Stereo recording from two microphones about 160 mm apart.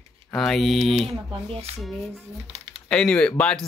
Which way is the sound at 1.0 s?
35° right (ahead or behind).